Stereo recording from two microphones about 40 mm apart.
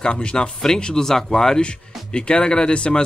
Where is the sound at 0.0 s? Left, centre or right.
Left.